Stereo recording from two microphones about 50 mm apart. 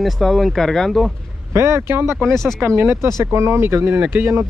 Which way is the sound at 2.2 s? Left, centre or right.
Centre.